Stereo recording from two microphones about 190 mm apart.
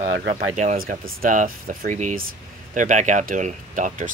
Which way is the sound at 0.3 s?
45° right (ahead or behind).